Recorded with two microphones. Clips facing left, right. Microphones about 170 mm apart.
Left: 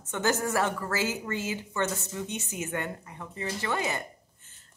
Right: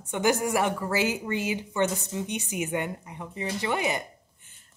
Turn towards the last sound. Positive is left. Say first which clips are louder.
# even
turn(degrees=-15)  # may be behind; listen again after turning